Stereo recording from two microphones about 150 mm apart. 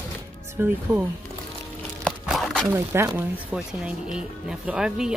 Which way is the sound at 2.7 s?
15° right (ahead or behind).